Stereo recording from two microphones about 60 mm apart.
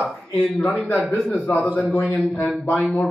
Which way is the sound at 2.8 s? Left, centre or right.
Centre.